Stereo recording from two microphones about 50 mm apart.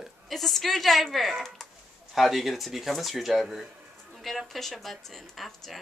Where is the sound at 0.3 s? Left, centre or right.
Centre.